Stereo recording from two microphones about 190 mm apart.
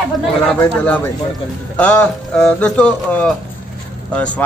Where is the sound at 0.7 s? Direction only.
10° left (ahead or behind).